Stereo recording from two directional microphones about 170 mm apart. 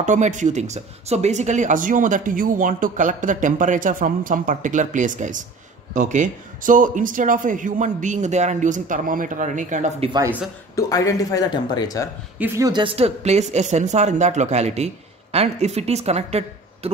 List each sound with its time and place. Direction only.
0.0 s speech: 45° right (ahead or behind)
10.8 s speech: 20° left (ahead or behind)
12.4 s speech: 15° right (ahead or behind); by 16.9 s 40° right (ahead or behind)